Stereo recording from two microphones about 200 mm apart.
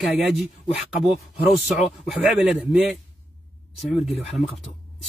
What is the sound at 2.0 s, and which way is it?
Speech, centre (ahead or behind).